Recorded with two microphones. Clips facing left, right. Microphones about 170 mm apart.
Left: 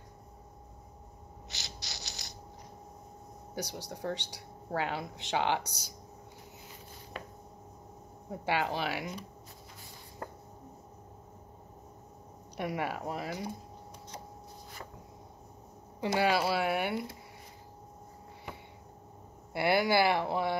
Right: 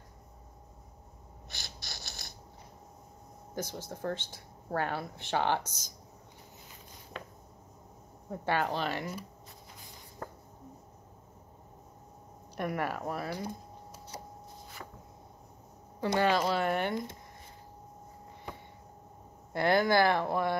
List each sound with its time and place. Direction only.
1.5 s mechanisms: 50° right (ahead or behind)
3.5 s speech: 15° left (ahead or behind)
8.3 s speech: 10° left (ahead or behind)
12.5 s speech: 10° left (ahead or behind)
16.1 s speech: 10° left (ahead or behind)
19.5 s speech: 10° left (ahead or behind)